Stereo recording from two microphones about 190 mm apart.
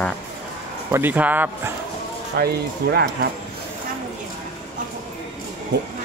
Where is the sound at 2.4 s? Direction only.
55° right (ahead or behind).